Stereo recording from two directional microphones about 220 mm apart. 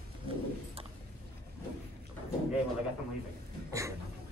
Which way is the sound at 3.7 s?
15° right (ahead or behind).